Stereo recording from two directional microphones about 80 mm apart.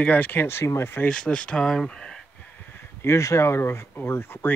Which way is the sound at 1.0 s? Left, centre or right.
Centre.